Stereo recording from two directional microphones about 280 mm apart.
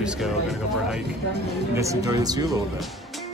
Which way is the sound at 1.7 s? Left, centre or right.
Centre.